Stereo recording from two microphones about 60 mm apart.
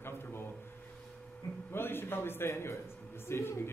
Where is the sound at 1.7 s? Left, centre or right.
Left.